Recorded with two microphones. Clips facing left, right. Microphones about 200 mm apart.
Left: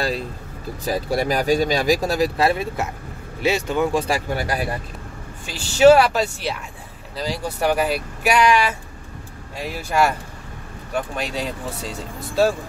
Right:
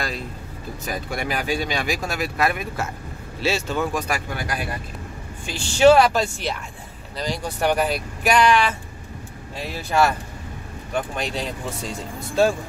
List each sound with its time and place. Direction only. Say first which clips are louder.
0.8 s speech: left 7 dB; 35° left (ahead or behind)
3.3 s speech: left 3 dB; 15° left (ahead or behind)
3.9 s speech: left 5 dB; 30° left (ahead or behind)
5.7 s speech: left 2 dB; 5° left (ahead or behind)
11.1 s speech: left 1 dB; 5° left (ahead or behind)